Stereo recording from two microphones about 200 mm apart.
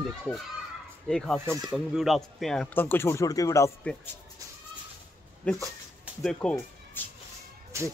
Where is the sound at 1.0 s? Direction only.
5° left (ahead or behind).